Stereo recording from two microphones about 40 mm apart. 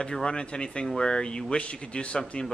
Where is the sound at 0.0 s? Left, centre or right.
Left.